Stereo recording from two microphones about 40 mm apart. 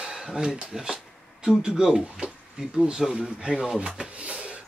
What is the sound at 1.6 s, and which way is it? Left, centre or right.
Speech, right.